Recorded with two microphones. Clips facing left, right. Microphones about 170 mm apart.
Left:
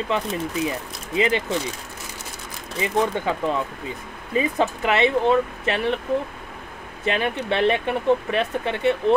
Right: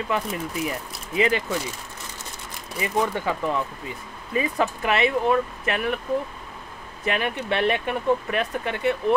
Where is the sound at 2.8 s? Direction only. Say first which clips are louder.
Left 2 dB; 25° left (ahead or behind).